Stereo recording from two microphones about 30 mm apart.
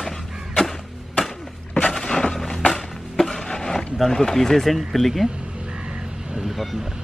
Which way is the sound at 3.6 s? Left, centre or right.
Centre.